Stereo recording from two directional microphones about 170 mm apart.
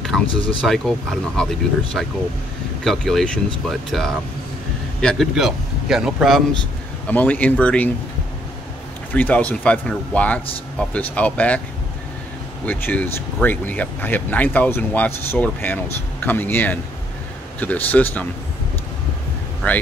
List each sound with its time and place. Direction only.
0.3 s speech: 30° left (ahead or behind)
0.7 s a man's voice: 5° left (ahead or behind)
7.1 s speech: 10° left (ahead or behind)
9.1 s speech: 10° left (ahead or behind)
12.6 s speech: 10° left (ahead or behind)